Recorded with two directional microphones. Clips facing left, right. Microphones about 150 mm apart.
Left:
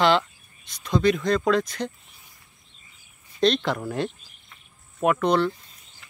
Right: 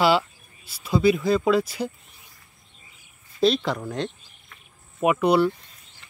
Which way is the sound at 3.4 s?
Centre (ahead or behind).